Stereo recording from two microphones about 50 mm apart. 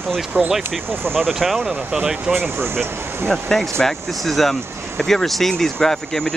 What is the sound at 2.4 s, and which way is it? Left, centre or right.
Speech, right.